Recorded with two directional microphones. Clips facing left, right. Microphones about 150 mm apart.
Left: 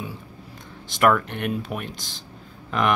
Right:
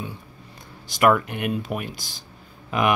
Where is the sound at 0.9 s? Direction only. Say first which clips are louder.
Right 1 dB; 5° right (ahead or behind).